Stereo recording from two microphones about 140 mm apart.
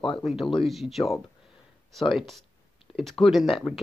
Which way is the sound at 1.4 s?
Centre (ahead or behind).